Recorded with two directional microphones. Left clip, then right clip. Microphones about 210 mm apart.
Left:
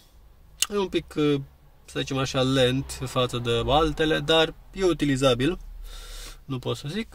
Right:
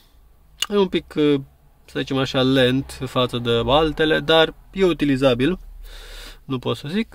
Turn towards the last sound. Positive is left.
turn(degrees=-25)  # may be behind; listen again after turning